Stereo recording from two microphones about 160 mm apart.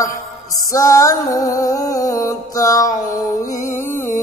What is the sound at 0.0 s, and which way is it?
Music, 20° left (ahead or behind).